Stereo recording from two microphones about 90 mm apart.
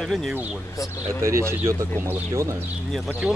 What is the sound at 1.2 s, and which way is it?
Speech, 30° right (ahead or behind).